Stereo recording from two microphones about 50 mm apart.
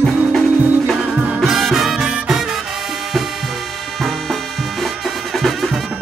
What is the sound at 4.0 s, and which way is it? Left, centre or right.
Music, centre.